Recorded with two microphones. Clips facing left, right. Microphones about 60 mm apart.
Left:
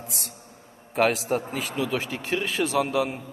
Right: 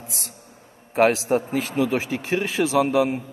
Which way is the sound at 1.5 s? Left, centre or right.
Right.